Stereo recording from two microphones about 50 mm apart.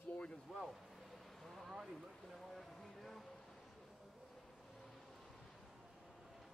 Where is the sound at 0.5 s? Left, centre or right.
Centre.